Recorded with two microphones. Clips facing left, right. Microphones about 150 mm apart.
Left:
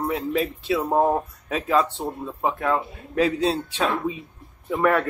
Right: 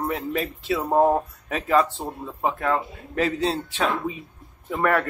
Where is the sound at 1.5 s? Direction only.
20° left (ahead or behind).